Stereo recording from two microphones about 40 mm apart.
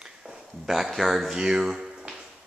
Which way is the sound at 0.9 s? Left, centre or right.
Centre.